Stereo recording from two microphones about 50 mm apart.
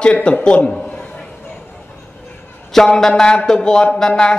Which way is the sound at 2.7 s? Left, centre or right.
Centre.